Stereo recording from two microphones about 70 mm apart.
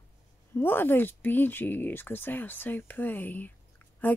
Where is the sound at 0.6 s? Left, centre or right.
Left.